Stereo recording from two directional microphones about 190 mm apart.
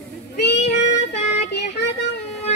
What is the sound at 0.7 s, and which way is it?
Child singing, 35° left (ahead or behind).